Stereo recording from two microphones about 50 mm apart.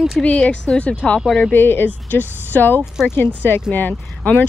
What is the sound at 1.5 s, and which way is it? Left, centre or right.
A woman's voice, left.